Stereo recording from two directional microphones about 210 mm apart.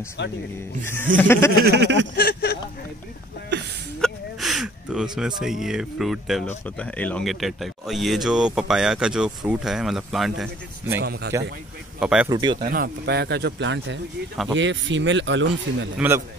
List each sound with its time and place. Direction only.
0.2 s speech: 55° left (ahead or behind)
0.8 s chuckle: 10° left (ahead or behind)
1.6 s speech: 50° right (ahead or behind)
2.1 s speech: 50° left (ahead or behind)
4.0 s speech: centre (ahead or behind)
11.0 s speech: 55° right (ahead or behind)
12.0 s speech: 5° right (ahead or behind)
12.3 s speech: 20° right (ahead or behind)
12.6 s speech: 45° right (ahead or behind); by 15.9 s 60° right (ahead or behind)